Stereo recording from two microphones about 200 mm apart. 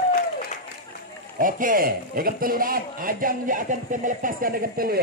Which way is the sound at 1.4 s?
45° right (ahead or behind).